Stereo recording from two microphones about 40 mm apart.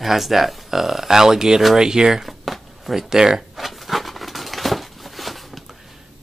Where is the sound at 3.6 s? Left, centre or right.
Centre.